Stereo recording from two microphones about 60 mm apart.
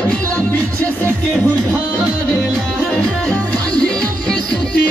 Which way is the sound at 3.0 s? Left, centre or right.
Centre.